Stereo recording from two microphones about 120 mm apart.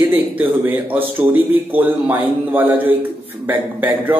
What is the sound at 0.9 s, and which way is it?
Speech, 15° right (ahead or behind).